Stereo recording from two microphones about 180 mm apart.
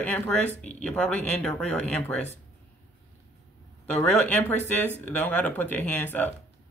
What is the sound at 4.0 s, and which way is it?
Speech, 10° left (ahead or behind).